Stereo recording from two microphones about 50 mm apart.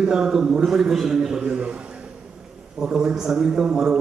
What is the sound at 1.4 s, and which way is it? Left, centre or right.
Speech, right.